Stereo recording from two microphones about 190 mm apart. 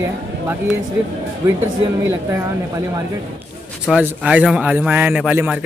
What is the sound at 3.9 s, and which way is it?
Speech, 5° right (ahead or behind).